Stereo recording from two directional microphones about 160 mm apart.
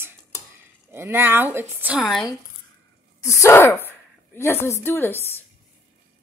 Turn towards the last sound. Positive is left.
turn(degrees=15)  # may be behind; listen again after turning